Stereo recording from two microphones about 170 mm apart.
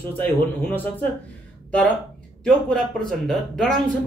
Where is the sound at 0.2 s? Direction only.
10° left (ahead or behind).